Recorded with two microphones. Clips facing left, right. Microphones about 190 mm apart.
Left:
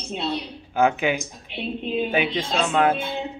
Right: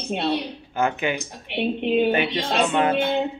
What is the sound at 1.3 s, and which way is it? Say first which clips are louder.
Speech: right 6 dB; 70° right (ahead or behind).